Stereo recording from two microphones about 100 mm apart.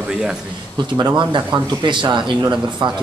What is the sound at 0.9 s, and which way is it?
Speech, 45° right (ahead or behind).